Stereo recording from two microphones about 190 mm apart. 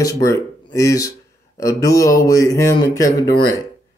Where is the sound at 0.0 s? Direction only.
20° left (ahead or behind).